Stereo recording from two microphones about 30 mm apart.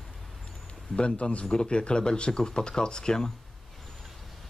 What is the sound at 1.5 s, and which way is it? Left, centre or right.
Speech, left.